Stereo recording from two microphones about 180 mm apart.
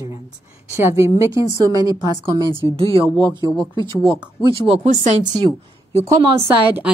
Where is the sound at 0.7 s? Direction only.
15° right (ahead or behind).